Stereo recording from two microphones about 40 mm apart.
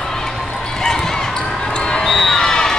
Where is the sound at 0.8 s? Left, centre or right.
Centre.